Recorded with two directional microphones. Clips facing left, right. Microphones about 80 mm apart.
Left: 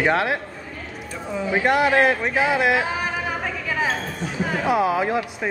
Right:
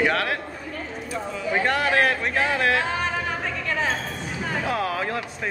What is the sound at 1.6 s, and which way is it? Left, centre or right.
Chatter, centre.